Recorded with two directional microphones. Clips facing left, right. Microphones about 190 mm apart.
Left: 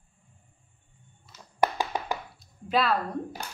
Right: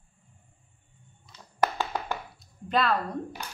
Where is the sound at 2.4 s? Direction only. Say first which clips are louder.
Even; centre (ahead or behind).